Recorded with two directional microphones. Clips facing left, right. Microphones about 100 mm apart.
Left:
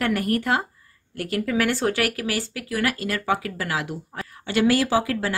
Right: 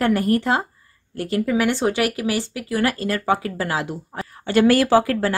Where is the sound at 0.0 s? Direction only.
30° right (ahead or behind).